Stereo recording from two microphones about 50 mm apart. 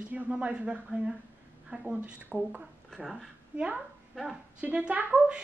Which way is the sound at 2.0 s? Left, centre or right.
Centre.